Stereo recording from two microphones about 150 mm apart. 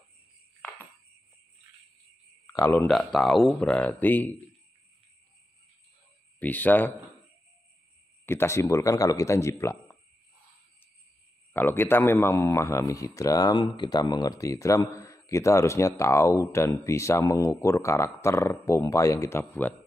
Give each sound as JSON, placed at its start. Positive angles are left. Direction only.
{"t": 2.4, "sound": "a sound", "side_deg": 15}
{"t": 2.9, "sound": "speech", "side_deg": 0}
{"t": 6.4, "sound": "speech", "side_deg": 10}
{"t": 8.3, "sound": "speech", "side_deg": 15}
{"t": 11.5, "sound": "speech", "side_deg": 15}